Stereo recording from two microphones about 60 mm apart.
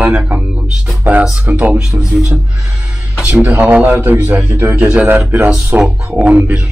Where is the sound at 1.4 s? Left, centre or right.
Right.